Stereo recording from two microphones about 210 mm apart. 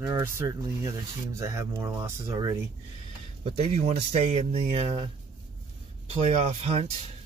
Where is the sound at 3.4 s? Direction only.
30° right (ahead or behind).